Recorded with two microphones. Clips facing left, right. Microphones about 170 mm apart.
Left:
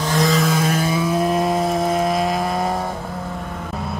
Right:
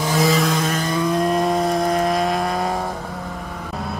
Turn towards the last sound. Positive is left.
turn(degrees=0)  # may be behind; listen again after turning